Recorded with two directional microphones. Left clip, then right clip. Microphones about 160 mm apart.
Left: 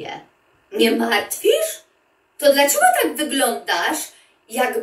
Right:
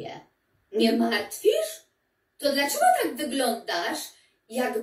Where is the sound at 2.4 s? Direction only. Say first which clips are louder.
Left 9 dB; 40° left (ahead or behind).